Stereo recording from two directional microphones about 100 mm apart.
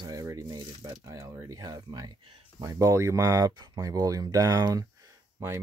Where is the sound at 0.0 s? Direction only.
35° right (ahead or behind).